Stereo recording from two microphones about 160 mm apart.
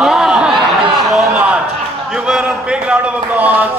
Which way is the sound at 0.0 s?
5° right (ahead or behind).